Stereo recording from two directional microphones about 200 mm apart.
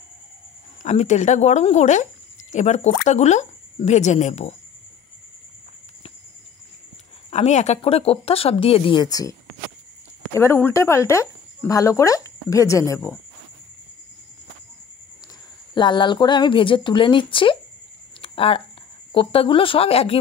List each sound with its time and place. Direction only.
0.8 s speech: 35° left (ahead or behind)
7.2 s speech: 35° left (ahead or behind); by 13.2 s 15° left (ahead or behind)
15.7 s speech: 25° left (ahead or behind)
18.2 s a sound: 30° left (ahead or behind)
19.1 s speech: 25° left (ahead or behind)